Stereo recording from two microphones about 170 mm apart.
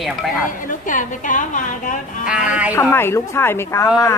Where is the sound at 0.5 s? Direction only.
50° left (ahead or behind).